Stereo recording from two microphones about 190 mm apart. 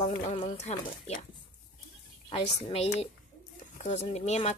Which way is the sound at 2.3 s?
30° left (ahead or behind).